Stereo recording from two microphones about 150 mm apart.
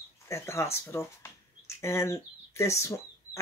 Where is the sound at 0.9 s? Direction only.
15° left (ahead or behind).